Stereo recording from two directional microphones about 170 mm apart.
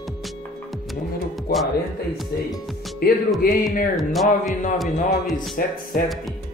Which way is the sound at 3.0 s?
65° left (ahead or behind).